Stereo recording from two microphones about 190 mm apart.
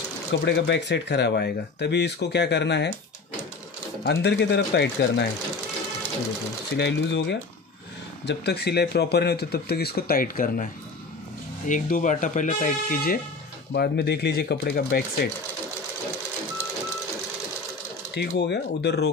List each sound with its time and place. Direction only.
0.3 s speech: 65° left (ahead or behind)
4.0 s speech: 60° left (ahead or behind)
6.7 s speech: 65° left (ahead or behind)
18.4 s speech: 60° left (ahead or behind)